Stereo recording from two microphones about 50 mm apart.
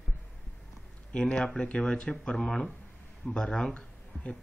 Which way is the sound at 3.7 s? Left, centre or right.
Left.